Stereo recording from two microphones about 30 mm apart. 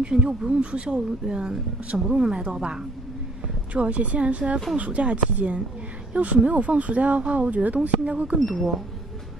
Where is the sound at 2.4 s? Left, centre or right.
Right.